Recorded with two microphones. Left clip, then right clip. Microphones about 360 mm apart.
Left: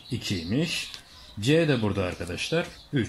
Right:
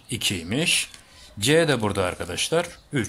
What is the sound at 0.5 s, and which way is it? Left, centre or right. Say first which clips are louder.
Speech: right 5 dB; right.